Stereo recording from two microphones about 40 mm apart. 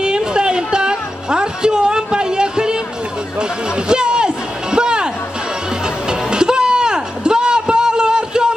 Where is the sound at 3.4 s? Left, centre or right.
Right.